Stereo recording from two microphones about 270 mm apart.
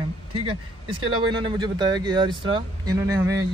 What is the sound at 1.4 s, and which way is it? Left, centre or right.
Speech, centre.